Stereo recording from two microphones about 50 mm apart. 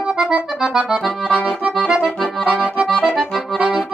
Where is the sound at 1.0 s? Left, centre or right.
Centre.